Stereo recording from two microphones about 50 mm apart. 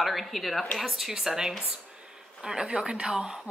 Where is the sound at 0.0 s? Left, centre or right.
Centre.